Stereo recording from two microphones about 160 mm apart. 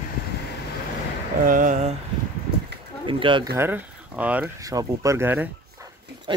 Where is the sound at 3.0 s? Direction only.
30° right (ahead or behind).